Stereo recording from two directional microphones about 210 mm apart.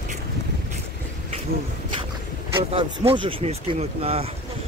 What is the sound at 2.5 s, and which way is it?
Speech, 25° right (ahead or behind).